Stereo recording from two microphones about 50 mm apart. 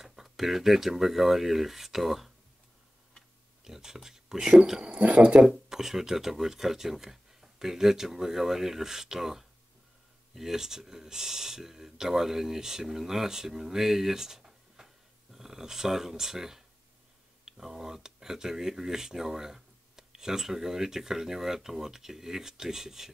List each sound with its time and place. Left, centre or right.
0.0 s speech: centre
3.6 s speech: centre
4.9 s speech: right
5.3 s speech: centre